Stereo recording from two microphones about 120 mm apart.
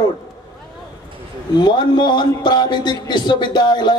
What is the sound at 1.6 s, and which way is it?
Speech, 40° left (ahead or behind).